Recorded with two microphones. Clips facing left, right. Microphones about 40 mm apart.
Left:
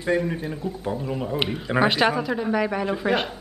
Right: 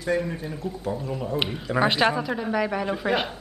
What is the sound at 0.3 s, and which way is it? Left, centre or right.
A man's voice, centre.